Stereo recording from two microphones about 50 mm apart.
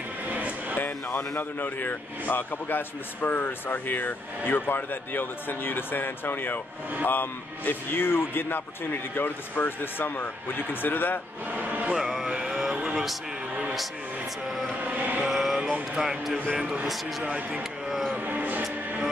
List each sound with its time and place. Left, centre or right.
0.3 s a sound: right
0.7 s speech: left
11.5 s speech: right
11.9 s speech: centre
12.3 s music: centre
14.9 s chant: right
15.2 s music: centre
16.0 s speech: centre
18.2 s music: right